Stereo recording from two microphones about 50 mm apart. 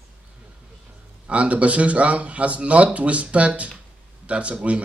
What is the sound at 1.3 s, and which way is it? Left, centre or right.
Speech, right.